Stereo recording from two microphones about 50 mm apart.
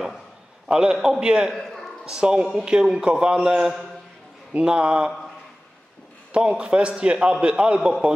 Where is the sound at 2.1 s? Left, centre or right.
Centre.